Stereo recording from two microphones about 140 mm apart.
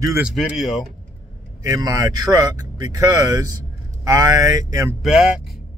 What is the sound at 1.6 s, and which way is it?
Speech, 25° right (ahead or behind).